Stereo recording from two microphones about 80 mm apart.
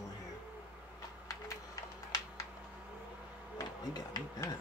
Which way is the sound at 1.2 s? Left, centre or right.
Left.